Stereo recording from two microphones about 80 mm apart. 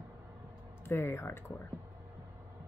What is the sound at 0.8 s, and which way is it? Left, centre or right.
Speech, left.